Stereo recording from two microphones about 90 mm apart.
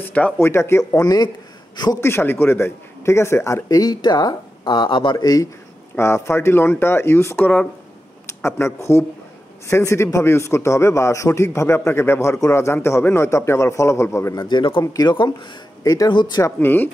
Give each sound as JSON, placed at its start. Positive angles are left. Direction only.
{"t": 0.0, "sound": "speech", "side_deg": 15}
{"t": 0.4, "sound": "a man's voice", "side_deg": 30}
{"t": 1.0, "sound": "speech", "side_deg": 50}
{"t": 2.0, "sound": "a man's voice", "side_deg": 25}
{"t": 3.6, "sound": "speech", "side_deg": 45}
{"t": 5.1, "sound": "speech", "side_deg": 40}
{"t": 5.9, "sound": "a man's voice", "side_deg": 30}
{"t": 14.5, "sound": "speech", "side_deg": 70}
{"t": 14.8, "sound": "speech", "side_deg": 50}
{"t": 16.1, "sound": "speech", "side_deg": 60}
{"t": 16.5, "sound": "a man's voice", "side_deg": 20}